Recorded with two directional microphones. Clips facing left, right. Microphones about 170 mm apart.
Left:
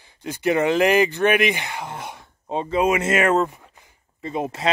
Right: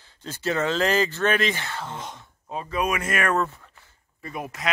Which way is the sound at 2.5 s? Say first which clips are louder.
Left 6 dB; 25° left (ahead or behind).